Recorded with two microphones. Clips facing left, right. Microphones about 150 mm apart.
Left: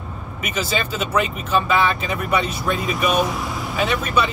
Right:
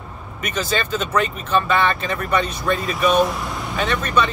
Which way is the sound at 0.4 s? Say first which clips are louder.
Right 1 dB; 5° left (ahead or behind).